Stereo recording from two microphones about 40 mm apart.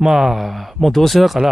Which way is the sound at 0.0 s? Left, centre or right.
Centre.